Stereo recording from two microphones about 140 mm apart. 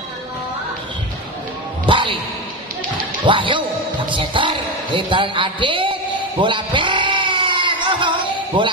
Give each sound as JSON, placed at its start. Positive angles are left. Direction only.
{"t": 1.9, "sound": "music", "side_deg": -35}
{"t": 3.3, "sound": "a man's voice", "side_deg": -35}
{"t": 6.4, "sound": "sheep", "side_deg": -35}